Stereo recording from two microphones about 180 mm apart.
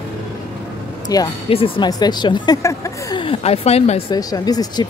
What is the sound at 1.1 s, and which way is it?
Speech, 20° left (ahead or behind).